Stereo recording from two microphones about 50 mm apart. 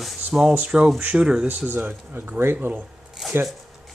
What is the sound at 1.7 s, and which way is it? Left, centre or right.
Speech, right.